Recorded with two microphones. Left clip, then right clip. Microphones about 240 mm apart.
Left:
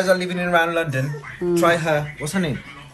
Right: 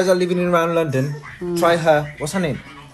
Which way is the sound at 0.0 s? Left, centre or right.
Right.